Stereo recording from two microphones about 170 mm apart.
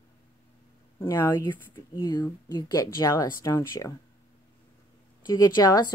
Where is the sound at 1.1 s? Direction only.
15° left (ahead or behind).